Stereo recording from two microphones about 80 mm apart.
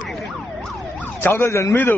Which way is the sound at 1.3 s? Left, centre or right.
Left.